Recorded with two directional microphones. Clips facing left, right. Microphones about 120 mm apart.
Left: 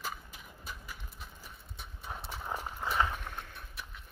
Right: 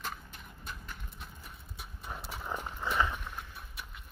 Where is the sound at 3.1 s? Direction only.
65° left (ahead or behind).